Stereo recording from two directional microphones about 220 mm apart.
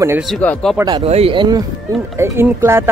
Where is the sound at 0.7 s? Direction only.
20° right (ahead or behind).